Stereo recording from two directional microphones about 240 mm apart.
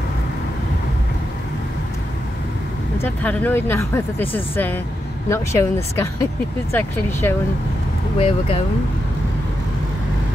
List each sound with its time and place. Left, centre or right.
3.0 s speech: centre
8.2 s speech: left